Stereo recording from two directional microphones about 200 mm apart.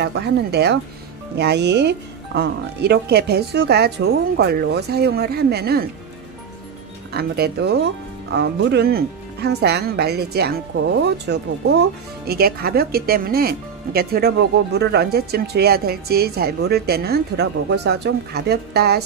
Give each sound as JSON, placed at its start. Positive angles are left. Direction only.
{"t": 0.0, "sound": "speech", "side_deg": -55}
{"t": 7.2, "sound": "speech", "side_deg": -50}